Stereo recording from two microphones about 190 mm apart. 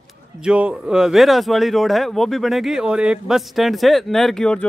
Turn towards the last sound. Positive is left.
turn(degrees=5)  # may be behind; listen again after turning